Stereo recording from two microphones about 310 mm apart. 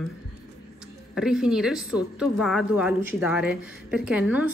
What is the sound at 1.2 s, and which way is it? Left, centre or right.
A woman's voice, centre.